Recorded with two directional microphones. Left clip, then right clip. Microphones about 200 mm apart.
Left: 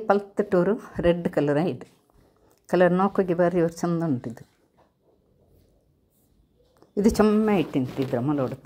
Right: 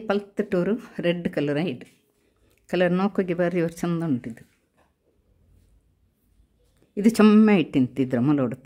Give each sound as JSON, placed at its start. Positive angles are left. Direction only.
{"t": 0.1, "sound": "speech", "side_deg": -10}
{"t": 7.0, "sound": "speech", "side_deg": -30}